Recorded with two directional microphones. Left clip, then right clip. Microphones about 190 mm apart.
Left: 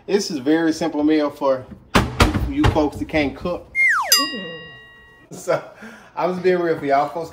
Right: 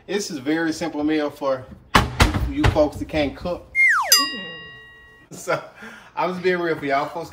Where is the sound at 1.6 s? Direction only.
10° right (ahead or behind).